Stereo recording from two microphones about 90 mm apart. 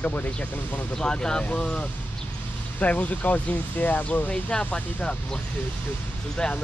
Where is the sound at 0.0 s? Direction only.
20° left (ahead or behind).